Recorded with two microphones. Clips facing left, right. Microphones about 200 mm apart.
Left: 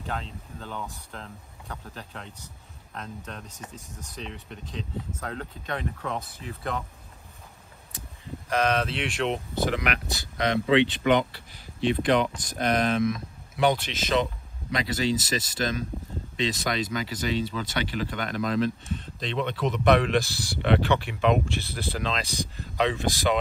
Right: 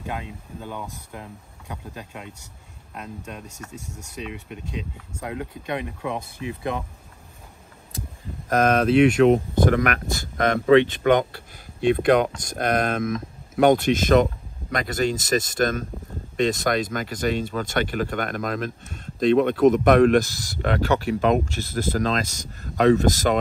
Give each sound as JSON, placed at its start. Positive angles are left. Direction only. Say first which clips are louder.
{"t": 0.0, "sound": "speech", "louder": "right 2 dB", "side_deg": -15}
{"t": 8.5, "sound": "speech", "louder": "right 6 dB", "side_deg": -45}